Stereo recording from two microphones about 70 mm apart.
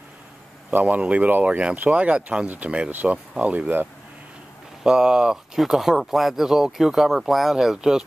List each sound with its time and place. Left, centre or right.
0.7 s speech: right
4.8 s speech: centre